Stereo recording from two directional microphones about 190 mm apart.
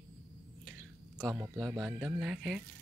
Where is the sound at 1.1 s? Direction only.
Centre (ahead or behind).